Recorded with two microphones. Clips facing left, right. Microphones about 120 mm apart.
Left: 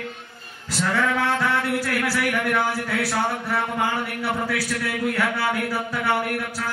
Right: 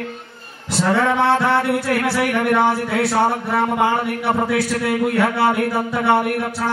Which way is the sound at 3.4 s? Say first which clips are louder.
Right 6 dB; 30° right (ahead or behind).